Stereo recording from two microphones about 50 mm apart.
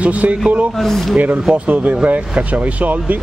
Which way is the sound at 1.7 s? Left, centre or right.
Right.